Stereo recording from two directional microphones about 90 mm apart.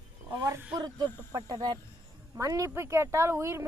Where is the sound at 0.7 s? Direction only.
50° right (ahead or behind).